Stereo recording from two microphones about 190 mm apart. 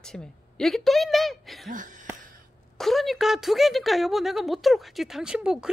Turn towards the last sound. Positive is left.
turn(degrees=-5)  # may be behind; listen again after turning